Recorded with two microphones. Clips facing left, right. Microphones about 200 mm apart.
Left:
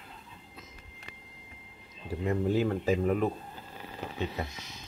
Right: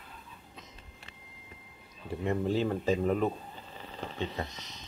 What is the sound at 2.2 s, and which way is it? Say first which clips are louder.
Speech: left 2 dB; 5° left (ahead or behind).